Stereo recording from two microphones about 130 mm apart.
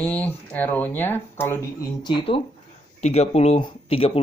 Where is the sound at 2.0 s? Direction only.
45° left (ahead or behind).